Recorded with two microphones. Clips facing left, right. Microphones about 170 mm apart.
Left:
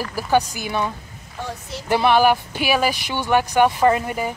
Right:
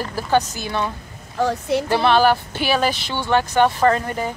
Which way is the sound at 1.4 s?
65° right (ahead or behind).